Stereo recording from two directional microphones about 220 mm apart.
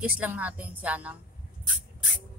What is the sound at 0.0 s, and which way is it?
A woman's voice, 5° right (ahead or behind).